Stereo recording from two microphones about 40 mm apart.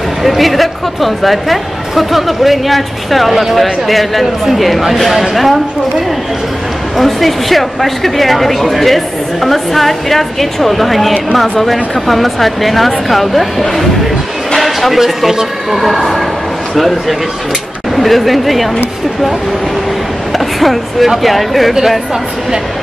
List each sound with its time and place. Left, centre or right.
0.2 s speech: centre
7.0 s speech: centre
17.9 s speech: centre
20.3 s speech: centre